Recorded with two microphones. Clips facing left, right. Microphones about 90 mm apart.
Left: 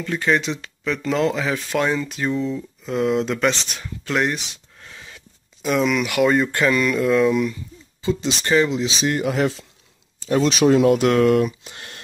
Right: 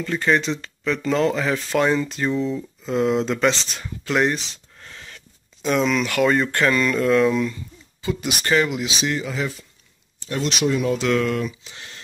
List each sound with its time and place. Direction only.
0.0 s speech: centre (ahead or behind)
8.0 s speech: 20° left (ahead or behind)
9.1 s speech: 60° left (ahead or behind)
10.7 s speech: 90° left
11.0 s speech: 50° left (ahead or behind)